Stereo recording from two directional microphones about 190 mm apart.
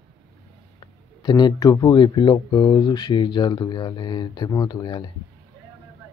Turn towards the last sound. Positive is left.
turn(degrees=20)  # may be behind; listen again after turning